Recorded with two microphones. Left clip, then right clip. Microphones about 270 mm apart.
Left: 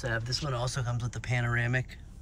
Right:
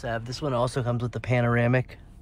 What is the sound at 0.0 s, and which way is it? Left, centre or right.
Speech, centre.